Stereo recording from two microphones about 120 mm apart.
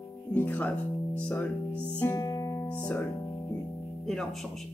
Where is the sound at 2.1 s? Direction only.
30° left (ahead or behind).